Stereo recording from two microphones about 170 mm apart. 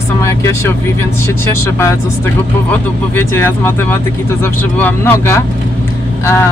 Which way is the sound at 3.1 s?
15° left (ahead or behind).